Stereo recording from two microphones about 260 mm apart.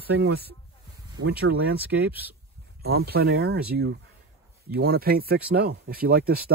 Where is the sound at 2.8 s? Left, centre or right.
Right.